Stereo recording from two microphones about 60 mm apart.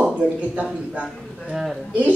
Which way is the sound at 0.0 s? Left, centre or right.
Right.